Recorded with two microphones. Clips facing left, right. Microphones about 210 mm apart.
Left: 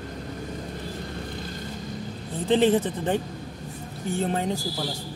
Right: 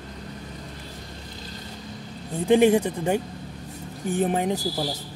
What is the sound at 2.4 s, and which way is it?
Speech, 15° right (ahead or behind).